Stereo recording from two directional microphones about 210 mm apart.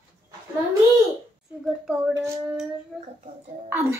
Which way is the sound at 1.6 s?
Centre (ahead or behind).